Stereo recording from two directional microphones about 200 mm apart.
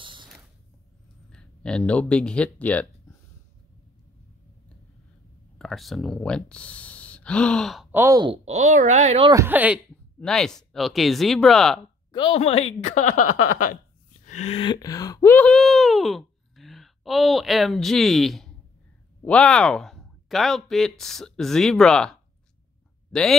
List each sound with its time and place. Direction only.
0.0 s a sound: 25° right (ahead or behind)
1.3 s speech: 5° left (ahead or behind)
5.6 s speech: centre (ahead or behind)
8.0 s speech: 20° right (ahead or behind)
8.5 s speech: 35° right (ahead or behind)
9.3 s speech: 10° right (ahead or behind)
10.2 s speech: 5° left (ahead or behind)
12.1 s speech: 25° left (ahead or behind)
14.2 s a sound: 35° left (ahead or behind); by 18.5 s centre (ahead or behind)
19.2 s speech: 5° left (ahead or behind)
23.1 s speech: centre (ahead or behind)